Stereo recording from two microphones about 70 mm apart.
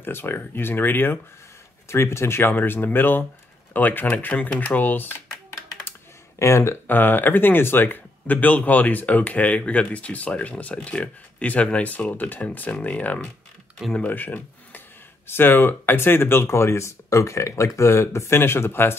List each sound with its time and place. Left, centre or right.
0.0 s speech: left
1.9 s speech: left
6.4 s speech: left
6.9 s speech: left